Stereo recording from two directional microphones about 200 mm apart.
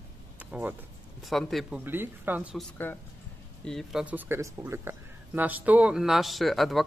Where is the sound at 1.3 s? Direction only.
Centre (ahead or behind).